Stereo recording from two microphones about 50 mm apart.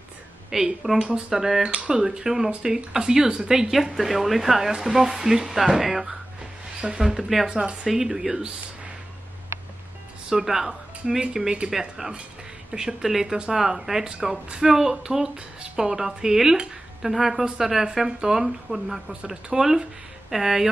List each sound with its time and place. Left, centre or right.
0.5 s speech: centre
3.7 s speech: centre
7.4 s speech: right
7.8 s speech: centre
10.3 s speech: centre